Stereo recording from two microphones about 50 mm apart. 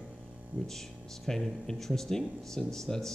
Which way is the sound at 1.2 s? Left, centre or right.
Centre.